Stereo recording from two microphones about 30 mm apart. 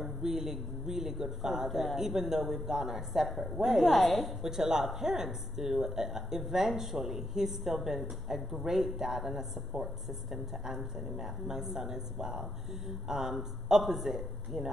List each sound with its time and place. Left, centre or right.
0.2 s a woman's voice: centre
4.5 s a woman's voice: centre
12.3 s a man's voice: centre